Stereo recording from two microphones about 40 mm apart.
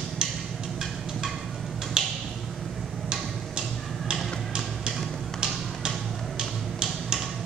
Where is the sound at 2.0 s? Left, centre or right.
Centre.